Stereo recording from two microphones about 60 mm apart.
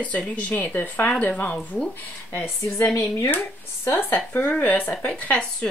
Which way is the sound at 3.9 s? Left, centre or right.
Left.